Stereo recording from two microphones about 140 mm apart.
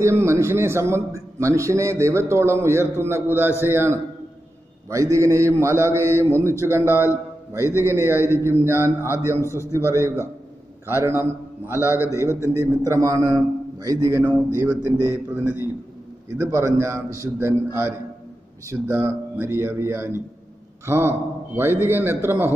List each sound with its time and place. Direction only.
0.0 s a man's voice: 20° right (ahead or behind)
9.3 s a man's voice: 20° left (ahead or behind)
9.7 s a man's voice: 20° right (ahead or behind)